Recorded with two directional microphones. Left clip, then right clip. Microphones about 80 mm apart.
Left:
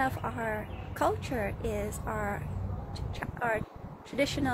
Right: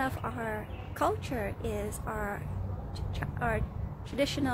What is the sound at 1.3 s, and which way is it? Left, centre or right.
A woman's voice, right.